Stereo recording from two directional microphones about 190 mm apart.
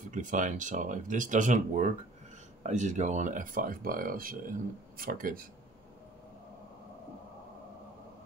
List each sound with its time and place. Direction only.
0.1 s speech: 40° right (ahead or behind)